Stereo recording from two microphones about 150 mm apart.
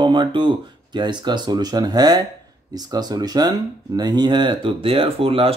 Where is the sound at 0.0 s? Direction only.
30° right (ahead or behind).